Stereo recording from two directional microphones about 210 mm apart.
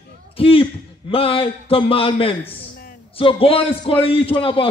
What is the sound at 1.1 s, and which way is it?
A man's voice, 25° left (ahead or behind).